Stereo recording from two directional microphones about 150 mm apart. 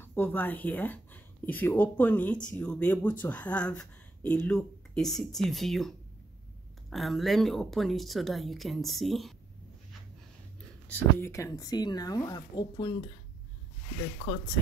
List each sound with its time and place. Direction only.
0.0 s speech: 15° left (ahead or behind)
10.9 s speech: 15° left (ahead or behind)